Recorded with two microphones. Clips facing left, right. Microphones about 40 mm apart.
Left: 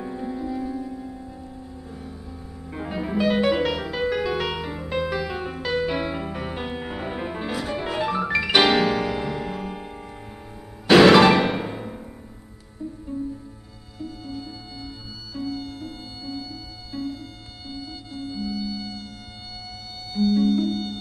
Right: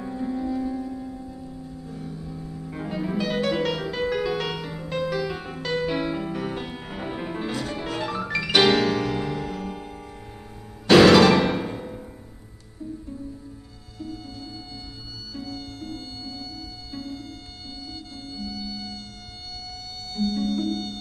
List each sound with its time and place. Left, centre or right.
0.0 s music: centre
20.2 s music: centre